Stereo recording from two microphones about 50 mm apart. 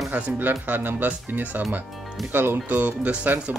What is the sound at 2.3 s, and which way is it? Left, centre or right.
Speech, right.